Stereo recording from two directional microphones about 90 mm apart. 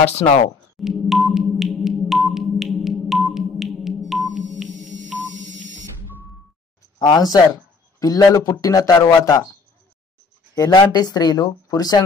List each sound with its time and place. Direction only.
0.2 s speech: 55° left (ahead or behind)
0.7 s music: centre (ahead or behind)
7.0 s speech: 50° left (ahead or behind)
10.7 s speech: 50° left (ahead or behind)